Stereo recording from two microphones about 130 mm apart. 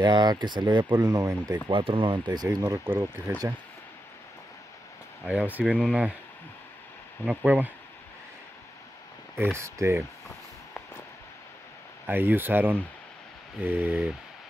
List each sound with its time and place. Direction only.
0.0 s speech: 35° right (ahead or behind)
1.7 s speech: 40° right (ahead or behind); by 3.3 s 15° right (ahead or behind)
5.2 s speech: 10° right (ahead or behind)
7.2 s speech: 10° right (ahead or behind)
9.6 s speech: 20° right (ahead or behind)
12.1 s speech: 15° right (ahead or behind)